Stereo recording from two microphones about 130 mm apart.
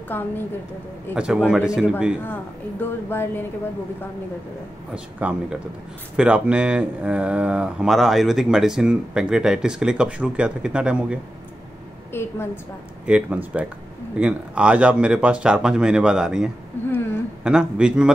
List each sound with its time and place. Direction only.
0.1 s speech: 15° left (ahead or behind)
1.1 s speech: 5° right (ahead or behind)
2.8 s speech: 15° left (ahead or behind)
4.9 s speech: 10° right (ahead or behind)
12.1 s a woman's voice: 15° left (ahead or behind)
13.0 s speech: 10° right (ahead or behind)